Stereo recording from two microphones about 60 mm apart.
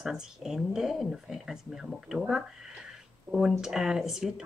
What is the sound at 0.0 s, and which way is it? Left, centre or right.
Speech, centre.